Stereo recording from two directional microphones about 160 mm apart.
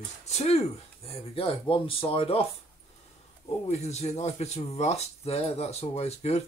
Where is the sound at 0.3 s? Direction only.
45° left (ahead or behind).